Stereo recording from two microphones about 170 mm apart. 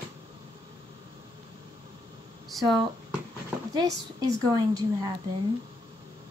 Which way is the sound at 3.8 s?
20° right (ahead or behind).